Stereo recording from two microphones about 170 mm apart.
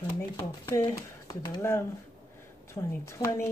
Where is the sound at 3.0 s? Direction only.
20° left (ahead or behind).